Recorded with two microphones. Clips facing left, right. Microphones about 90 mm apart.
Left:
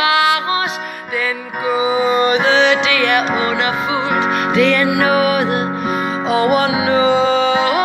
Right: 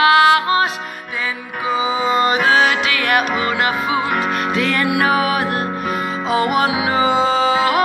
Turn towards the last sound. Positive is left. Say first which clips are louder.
# left 2 dB
turn(degrees=-35)  # may be behind; listen again after turning